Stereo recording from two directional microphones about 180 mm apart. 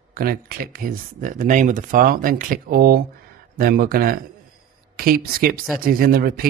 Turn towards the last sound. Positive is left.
turn(degrees=-55)  # may be behind; listen again after turning